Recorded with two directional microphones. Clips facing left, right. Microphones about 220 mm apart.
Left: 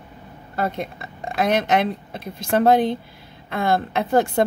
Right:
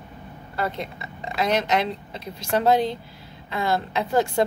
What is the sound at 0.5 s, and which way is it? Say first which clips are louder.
A woman's voice: left 3 dB; 50° left (ahead or behind).